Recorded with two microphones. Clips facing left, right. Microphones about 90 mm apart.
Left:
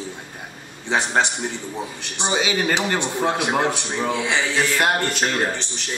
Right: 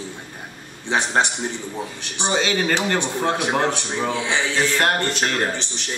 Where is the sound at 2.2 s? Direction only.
10° left (ahead or behind).